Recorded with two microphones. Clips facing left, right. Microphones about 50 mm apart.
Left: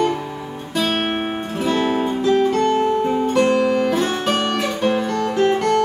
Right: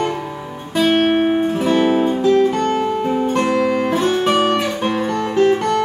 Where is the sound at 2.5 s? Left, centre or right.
Right.